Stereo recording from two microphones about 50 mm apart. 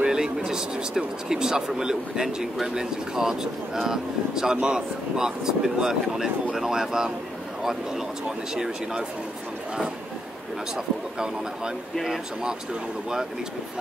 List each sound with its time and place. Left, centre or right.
0.0 s speech: centre
8.5 s speech: centre
12.0 s speech: centre